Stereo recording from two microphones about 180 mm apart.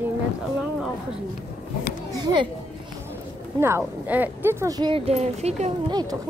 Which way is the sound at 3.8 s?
10° right (ahead or behind).